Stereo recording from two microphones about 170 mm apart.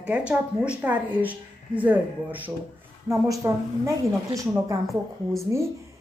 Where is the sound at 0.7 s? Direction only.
10° right (ahead or behind).